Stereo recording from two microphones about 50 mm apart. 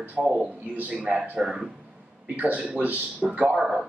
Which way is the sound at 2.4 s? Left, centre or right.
Right.